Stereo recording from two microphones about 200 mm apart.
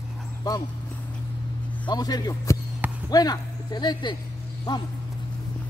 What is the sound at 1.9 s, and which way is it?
A man's voice, 20° left (ahead or behind).